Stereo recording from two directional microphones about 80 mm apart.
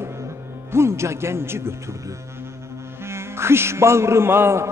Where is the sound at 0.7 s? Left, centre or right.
Right.